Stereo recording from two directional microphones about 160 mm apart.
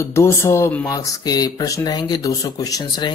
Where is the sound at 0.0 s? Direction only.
15° left (ahead or behind).